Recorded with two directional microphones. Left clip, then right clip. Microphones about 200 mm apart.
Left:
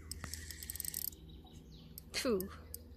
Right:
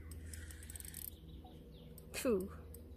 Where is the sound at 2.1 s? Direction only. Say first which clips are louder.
Left 1 dB; centre (ahead or behind).